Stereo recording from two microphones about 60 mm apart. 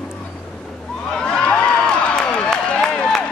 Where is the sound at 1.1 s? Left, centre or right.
Centre.